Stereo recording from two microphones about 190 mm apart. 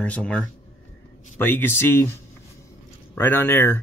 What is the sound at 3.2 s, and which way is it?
Speech, 10° left (ahead or behind).